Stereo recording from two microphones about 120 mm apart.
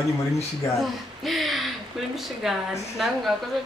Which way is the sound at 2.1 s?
Centre (ahead or behind).